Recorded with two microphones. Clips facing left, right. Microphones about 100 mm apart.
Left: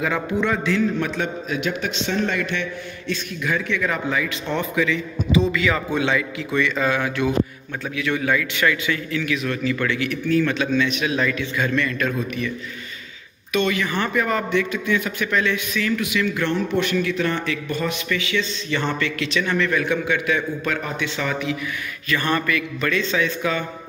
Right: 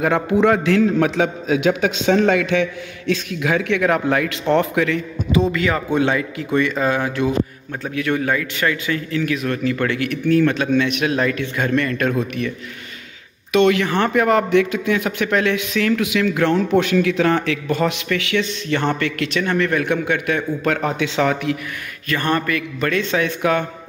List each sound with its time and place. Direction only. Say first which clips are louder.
0.0 s a man's voice: right 5 dB; 60° right (ahead or behind)
0.5 s a man's voice: right 5 dB; 70° right (ahead or behind); by 2.6 s 90° right
3.1 s a man's voice: right 5 dB; 75° right (ahead or behind)
4.8 s a man's voice: right 2 dB; 50° right (ahead or behind); by 7.2 s 35° right (ahead or behind)
7.8 s a man's voice: right 3 dB; 45° right (ahead or behind)
13.5 s a man's voice: right 6 dB; 75° right (ahead or behind); by 18.0 s 90° right
18.1 s a man's voice: right 3 dB; 70° right (ahead or behind)
22.0 s a man's voice: right 2 dB; 45° right (ahead or behind); by 23.6 s 60° right (ahead or behind)